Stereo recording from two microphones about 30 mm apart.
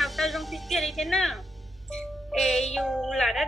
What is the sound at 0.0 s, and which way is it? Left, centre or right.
Music, centre.